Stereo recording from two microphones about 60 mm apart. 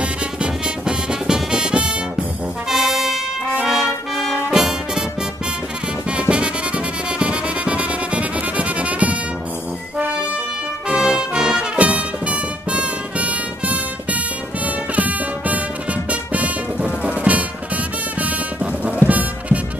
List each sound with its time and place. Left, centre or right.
0.0 s music: centre
2.7 s brass instrument: centre
6.0 s music: centre
10.9 s brass instrument: centre
11.8 s music: right
15.0 s music: right